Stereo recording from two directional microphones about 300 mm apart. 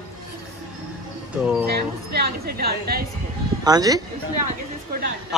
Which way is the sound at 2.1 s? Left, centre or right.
Right.